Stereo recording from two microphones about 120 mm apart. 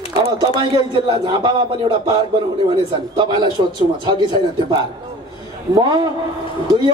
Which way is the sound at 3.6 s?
45° right (ahead or behind).